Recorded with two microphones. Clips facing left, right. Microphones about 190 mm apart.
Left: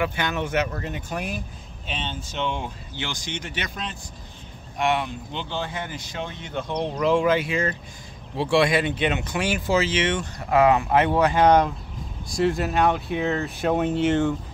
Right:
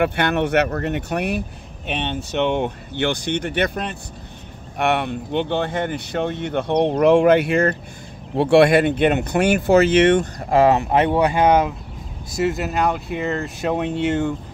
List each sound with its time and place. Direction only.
0.0 s speech: 60° right (ahead or behind)
10.5 s speech: 30° right (ahead or behind); by 14.3 s centre (ahead or behind)